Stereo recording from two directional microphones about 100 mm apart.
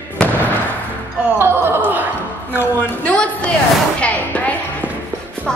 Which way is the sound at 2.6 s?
15° left (ahead or behind).